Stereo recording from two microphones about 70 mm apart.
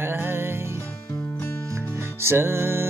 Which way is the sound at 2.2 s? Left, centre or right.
Right.